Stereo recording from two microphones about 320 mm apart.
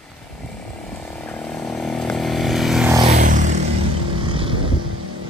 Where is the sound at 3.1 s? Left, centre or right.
Right.